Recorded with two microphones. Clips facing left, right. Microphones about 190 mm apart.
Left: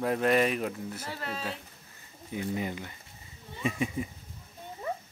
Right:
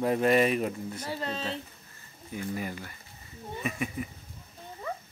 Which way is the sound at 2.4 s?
20° left (ahead or behind).